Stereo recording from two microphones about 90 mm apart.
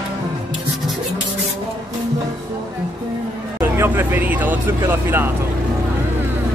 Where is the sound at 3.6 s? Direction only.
25° right (ahead or behind).